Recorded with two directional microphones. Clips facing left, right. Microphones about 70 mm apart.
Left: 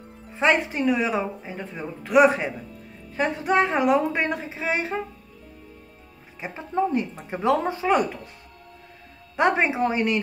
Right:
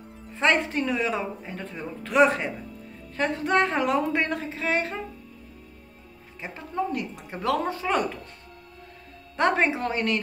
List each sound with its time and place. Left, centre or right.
0.4 s a woman's voice: centre
6.4 s speech: left
9.4 s a woman's voice: centre